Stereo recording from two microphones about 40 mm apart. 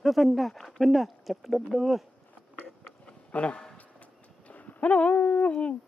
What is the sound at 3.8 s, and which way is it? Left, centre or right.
Clip-clop, left.